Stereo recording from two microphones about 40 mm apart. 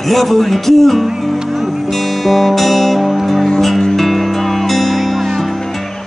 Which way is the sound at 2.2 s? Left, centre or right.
Centre.